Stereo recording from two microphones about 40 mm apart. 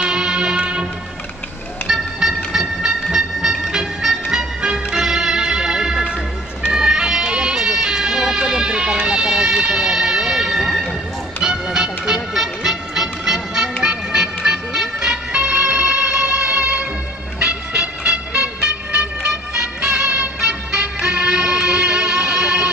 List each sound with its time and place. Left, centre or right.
0.0 s music: centre
1.9 s train: centre
6.7 s music: centre
15.0 s music: right
17.4 s train: right